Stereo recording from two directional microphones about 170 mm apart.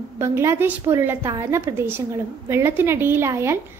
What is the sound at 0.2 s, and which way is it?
A woman's voice, 15° right (ahead or behind).